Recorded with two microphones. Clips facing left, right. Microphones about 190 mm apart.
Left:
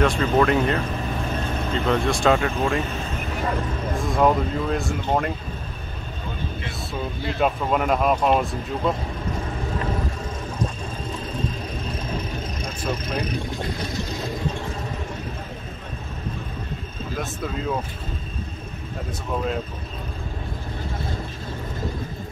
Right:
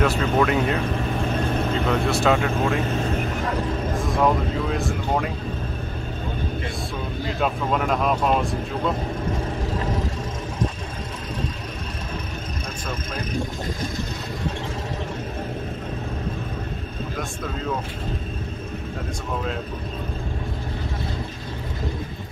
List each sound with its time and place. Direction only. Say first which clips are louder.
0.0 s speech: left 1 dB; 5° right (ahead or behind)
1.9 s speech: left 2 dB; 5° right (ahead or behind)
3.9 s speech: left 2 dB; centre (ahead or behind)
7.3 s speech: left 2 dB; 5° left (ahead or behind)